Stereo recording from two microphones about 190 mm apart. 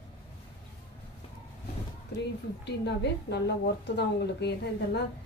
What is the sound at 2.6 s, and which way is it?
A woman's voice, 60° left (ahead or behind).